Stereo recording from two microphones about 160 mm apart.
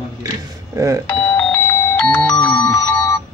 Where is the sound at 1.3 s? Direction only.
15° left (ahead or behind).